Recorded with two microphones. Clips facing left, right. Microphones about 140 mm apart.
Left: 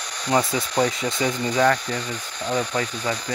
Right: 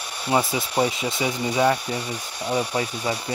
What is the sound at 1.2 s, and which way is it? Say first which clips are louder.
Speech: left 1 dB; 10° right (ahead or behind).